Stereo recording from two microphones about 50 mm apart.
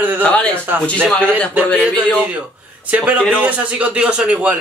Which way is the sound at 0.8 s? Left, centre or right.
Left.